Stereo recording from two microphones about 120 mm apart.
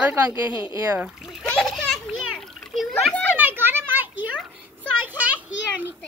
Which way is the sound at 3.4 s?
15° right (ahead or behind).